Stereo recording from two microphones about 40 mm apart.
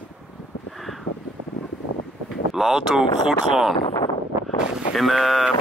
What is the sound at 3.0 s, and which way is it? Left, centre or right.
Speech, centre.